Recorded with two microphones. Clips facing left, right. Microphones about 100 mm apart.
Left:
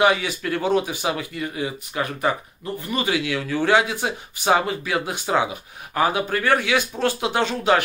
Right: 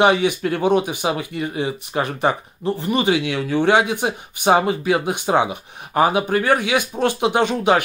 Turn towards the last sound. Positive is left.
turn(degrees=-15)  # may be behind; listen again after turning